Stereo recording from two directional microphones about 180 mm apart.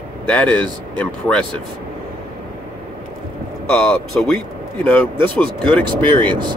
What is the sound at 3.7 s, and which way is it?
Speech, centre (ahead or behind).